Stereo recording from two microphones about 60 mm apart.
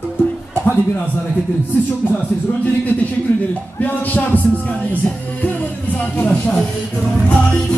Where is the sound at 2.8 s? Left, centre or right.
Left.